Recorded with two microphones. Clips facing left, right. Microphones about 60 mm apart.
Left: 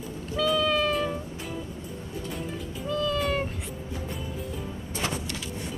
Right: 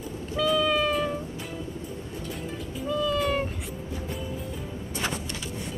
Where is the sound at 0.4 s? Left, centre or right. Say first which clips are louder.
Right 1 dB; centre.